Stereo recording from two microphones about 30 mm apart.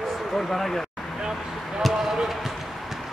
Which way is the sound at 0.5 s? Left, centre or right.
Centre.